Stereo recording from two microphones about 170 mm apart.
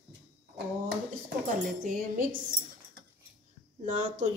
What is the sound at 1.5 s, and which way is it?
Speech, 55° right (ahead or behind).